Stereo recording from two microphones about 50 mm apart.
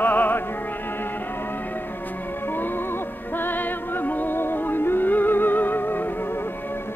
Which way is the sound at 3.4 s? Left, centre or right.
Left.